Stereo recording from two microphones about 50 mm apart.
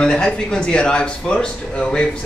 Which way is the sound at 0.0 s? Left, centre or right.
Centre.